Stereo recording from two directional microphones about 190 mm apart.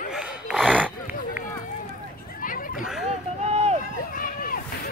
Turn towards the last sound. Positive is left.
turn(degrees=50)  # may be behind; listen again after turning